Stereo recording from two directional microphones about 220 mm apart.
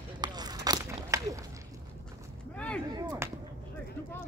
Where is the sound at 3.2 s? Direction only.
10° right (ahead or behind).